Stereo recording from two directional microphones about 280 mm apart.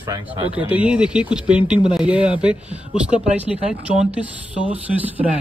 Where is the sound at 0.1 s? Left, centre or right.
Centre.